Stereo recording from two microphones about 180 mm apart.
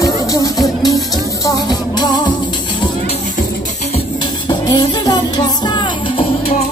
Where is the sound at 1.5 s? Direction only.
25° left (ahead or behind).